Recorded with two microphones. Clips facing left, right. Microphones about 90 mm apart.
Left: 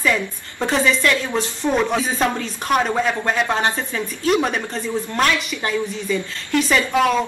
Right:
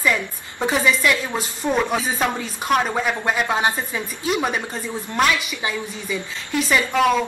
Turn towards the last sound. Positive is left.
turn(degrees=0)  # may be behind; listen again after turning